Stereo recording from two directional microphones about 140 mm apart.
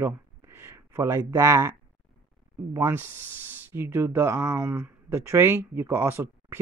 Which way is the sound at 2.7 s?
15° right (ahead or behind).